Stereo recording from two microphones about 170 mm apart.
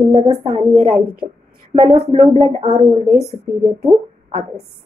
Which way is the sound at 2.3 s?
40° right (ahead or behind).